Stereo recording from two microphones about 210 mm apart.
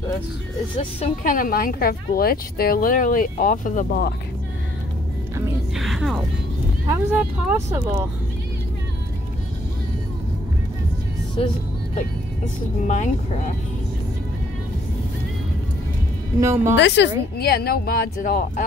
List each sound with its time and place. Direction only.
0.7 s speech: 35° left (ahead or behind)
5.8 s music: centre (ahead or behind)
7.4 s speech: 10° right (ahead or behind)
11.4 s speech: 25° left (ahead or behind)
12.8 s speech: 35° left (ahead or behind)
16.3 s speech: 15° right (ahead or behind)
16.7 s a woman's voice: 55° left (ahead or behind)